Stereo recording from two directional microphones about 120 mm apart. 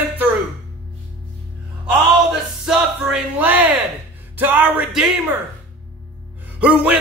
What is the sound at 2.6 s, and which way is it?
Music, 10° right (ahead or behind).